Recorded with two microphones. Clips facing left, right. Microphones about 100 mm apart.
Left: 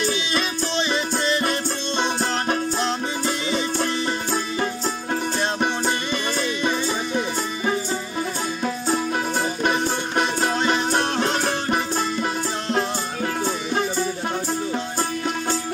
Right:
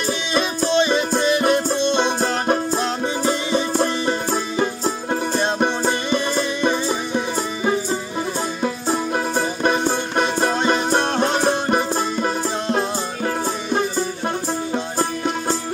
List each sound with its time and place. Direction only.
0.7 s music: 15° right (ahead or behind)
3.3 s music: 15° right (ahead or behind)
9.1 s music: 30° right (ahead or behind)